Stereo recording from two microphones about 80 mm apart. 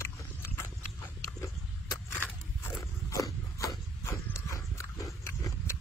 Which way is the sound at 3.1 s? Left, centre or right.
Left.